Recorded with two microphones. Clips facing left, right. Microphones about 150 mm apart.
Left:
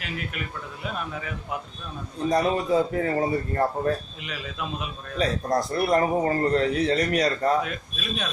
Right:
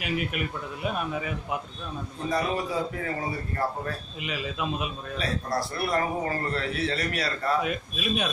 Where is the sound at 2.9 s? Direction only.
40° left (ahead or behind).